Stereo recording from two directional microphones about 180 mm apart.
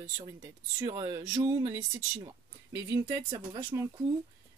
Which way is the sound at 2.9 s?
20° right (ahead or behind).